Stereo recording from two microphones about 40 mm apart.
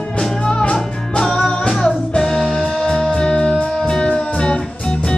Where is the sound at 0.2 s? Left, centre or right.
Left.